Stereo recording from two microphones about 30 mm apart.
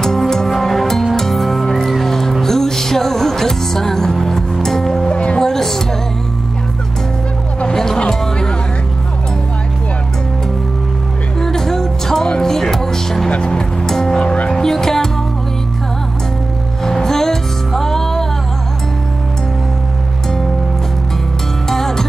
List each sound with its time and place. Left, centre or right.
0.0 s music: centre
5.1 s music: left
5.4 s music: centre
7.6 s music: centre
11.3 s music: centre
13.4 s music: left
13.8 s music: centre
14.2 s music: left
14.5 s music: centre
16.8 s music: centre
21.6 s music: centre